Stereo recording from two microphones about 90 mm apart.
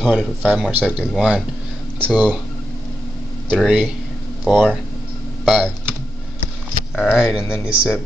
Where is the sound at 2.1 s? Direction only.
5° right (ahead or behind).